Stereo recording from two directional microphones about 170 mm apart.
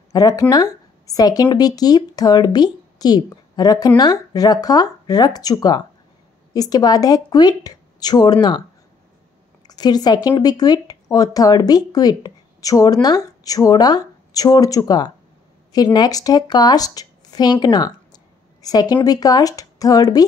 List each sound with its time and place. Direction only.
0.1 s speech: 20° left (ahead or behind)
9.7 s speech: 25° left (ahead or behind)